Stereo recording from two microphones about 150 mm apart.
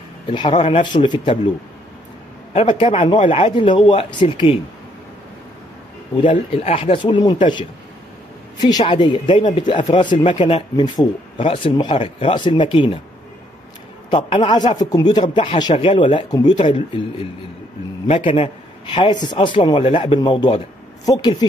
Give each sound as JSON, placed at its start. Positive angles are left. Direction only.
{"t": 0.3, "sound": "a man's voice", "side_deg": 35}
{"t": 2.5, "sound": "a man's voice", "side_deg": 35}
{"t": 6.3, "sound": "a man's voice", "side_deg": 45}
{"t": 8.5, "sound": "a man's voice", "side_deg": 25}
{"t": 14.1, "sound": "a man's voice", "side_deg": 35}